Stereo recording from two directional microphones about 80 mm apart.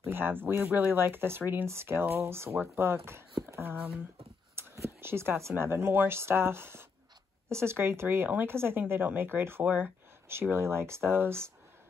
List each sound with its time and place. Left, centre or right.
0.0 s speech: right